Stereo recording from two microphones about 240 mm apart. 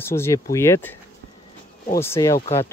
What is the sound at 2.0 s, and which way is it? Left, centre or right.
Speech, centre.